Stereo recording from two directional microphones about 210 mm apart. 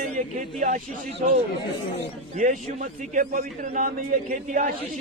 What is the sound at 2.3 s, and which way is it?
A man's voice, 35° right (ahead or behind).